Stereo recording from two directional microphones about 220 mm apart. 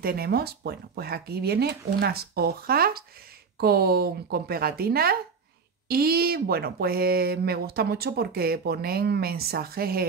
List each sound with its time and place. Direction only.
0.0 s speech: 45° right (ahead or behind)